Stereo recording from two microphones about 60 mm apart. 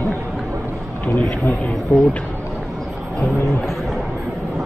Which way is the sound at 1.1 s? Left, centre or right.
Centre.